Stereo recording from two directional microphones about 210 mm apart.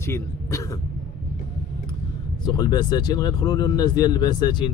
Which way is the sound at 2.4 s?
20° left (ahead or behind).